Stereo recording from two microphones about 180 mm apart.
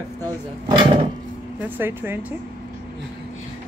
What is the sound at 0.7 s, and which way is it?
Speech, 25° right (ahead or behind).